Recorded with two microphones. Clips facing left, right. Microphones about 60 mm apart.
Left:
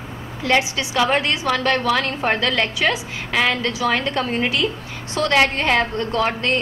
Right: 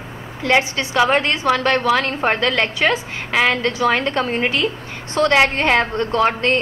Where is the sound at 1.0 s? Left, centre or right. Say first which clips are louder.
Right 3 dB; centre.